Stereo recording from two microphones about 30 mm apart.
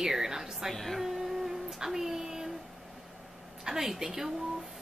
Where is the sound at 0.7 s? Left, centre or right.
Centre.